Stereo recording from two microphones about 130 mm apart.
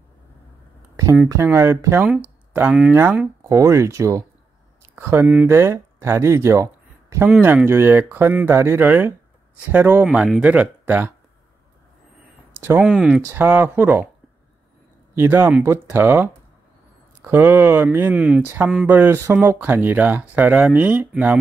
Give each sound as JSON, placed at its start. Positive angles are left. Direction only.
{"t": 1.3, "sound": "speech", "side_deg": -20}
{"t": 7.2, "sound": "speech", "side_deg": -10}
{"t": 10.0, "sound": "speech", "side_deg": -5}
{"t": 12.8, "sound": "speech", "side_deg": -5}
{"t": 15.1, "sound": "speech", "side_deg": -15}
{"t": 18.1, "sound": "speech", "side_deg": -5}
{"t": 18.9, "sound": "speech", "side_deg": -20}